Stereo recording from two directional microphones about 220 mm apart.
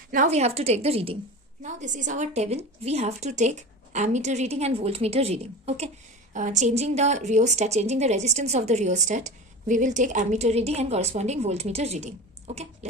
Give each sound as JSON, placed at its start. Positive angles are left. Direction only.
{"t": 0.1, "sound": "a woman's voice", "side_deg": -35}